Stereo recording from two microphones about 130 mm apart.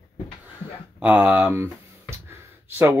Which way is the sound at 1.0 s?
10° right (ahead or behind).